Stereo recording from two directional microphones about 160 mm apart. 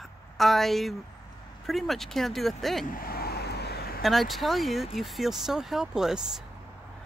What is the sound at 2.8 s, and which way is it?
Vehicle, 65° left (ahead or behind).